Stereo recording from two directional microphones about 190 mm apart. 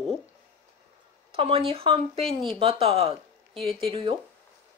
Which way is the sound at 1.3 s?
30° right (ahead or behind).